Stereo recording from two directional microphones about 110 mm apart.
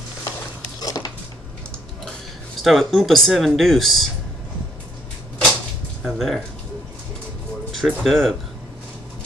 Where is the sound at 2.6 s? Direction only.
Centre (ahead or behind).